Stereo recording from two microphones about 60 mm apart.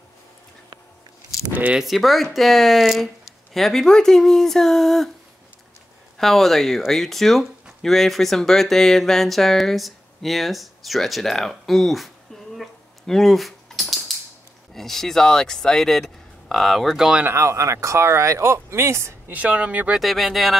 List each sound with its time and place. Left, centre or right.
1.5 s speech: right
1.8 s speech: centre
6.1 s speech: centre
12.5 s keys jangling: centre
14.7 s speech: centre
17.3 s speech: right
19.3 s speech: right
20.0 s speech: centre